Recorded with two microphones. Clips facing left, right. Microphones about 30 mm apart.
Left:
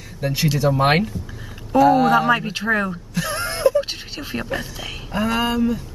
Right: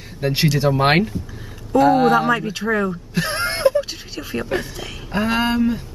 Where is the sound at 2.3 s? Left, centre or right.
Centre.